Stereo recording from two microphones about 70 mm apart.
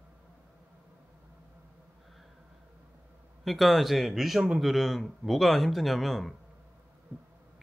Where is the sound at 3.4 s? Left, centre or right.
Centre.